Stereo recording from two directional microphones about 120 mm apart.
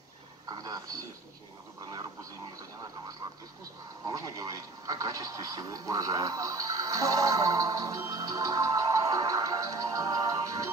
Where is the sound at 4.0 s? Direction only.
30° right (ahead or behind).